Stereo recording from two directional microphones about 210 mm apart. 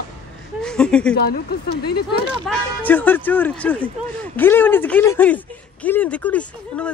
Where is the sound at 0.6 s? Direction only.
5° left (ahead or behind).